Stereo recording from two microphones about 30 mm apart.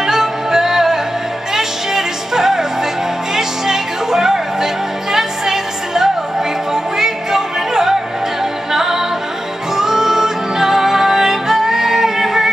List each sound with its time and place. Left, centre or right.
0.0 s music: centre